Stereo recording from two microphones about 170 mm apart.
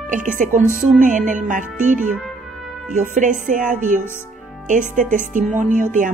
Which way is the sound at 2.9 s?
50° right (ahead or behind).